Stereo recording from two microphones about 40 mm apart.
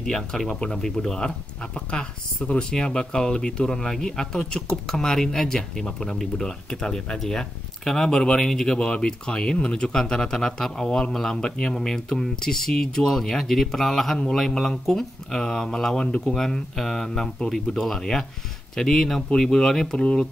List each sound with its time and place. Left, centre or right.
0.0 s speech: centre
1.9 s speech: left; by 8.7 s centre
8.7 s speech: left; by 20.0 s centre
20.0 s speech: left